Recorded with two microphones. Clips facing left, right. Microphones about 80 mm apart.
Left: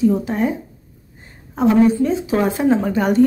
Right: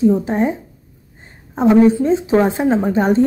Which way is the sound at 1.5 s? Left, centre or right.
Right.